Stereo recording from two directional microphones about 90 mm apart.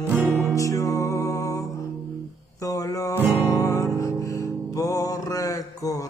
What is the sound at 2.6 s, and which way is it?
Music, 40° left (ahead or behind).